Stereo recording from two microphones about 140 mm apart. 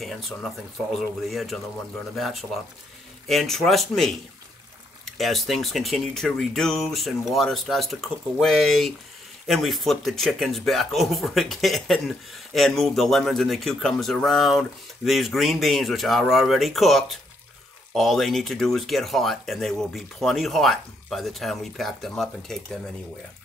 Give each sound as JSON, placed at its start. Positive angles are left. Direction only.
{"t": 0.0, "sound": "speech", "side_deg": 0}